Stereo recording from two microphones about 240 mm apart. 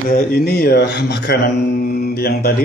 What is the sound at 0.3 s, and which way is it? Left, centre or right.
Speech, left.